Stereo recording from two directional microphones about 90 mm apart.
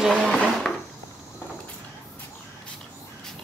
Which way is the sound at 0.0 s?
Centre (ahead or behind).